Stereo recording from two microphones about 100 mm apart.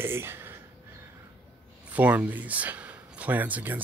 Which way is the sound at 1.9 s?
15° right (ahead or behind).